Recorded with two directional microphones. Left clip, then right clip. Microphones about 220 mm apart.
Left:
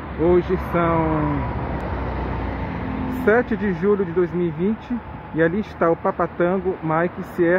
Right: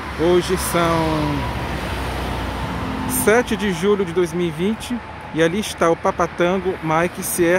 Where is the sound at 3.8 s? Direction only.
15° right (ahead or behind).